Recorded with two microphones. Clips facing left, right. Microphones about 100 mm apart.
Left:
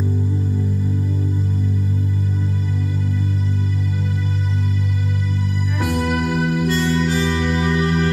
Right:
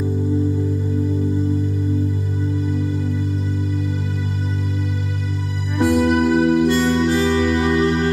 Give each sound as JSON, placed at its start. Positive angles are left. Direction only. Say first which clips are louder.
{"t": 6.0, "sound": "music", "louder": "right 5 dB", "side_deg": -30}
{"t": 6.7, "sound": "music", "louder": "right 3 dB", "side_deg": -20}